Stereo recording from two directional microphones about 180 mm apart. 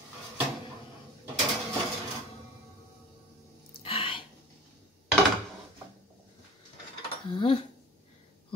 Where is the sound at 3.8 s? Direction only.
30° left (ahead or behind).